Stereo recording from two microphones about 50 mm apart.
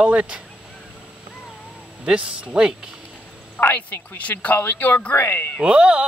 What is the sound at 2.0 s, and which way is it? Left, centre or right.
Speech, centre.